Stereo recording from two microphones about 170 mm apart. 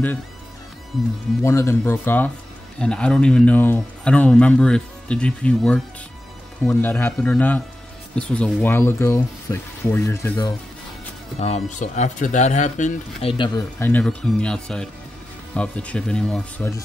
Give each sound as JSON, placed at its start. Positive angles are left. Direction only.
{"t": 1.4, "sound": "speech", "side_deg": 15}
{"t": 11.3, "sound": "speech", "side_deg": 40}
{"t": 13.7, "sound": "speech", "side_deg": 10}